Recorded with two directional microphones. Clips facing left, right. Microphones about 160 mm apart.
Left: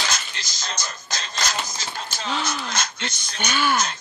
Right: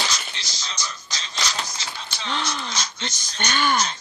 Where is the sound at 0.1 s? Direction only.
50° left (ahead or behind).